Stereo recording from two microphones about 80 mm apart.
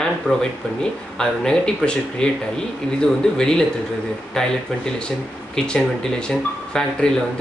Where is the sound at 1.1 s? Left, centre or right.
Centre.